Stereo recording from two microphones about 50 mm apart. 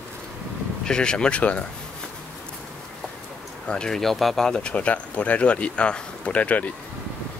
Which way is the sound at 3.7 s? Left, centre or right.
Centre.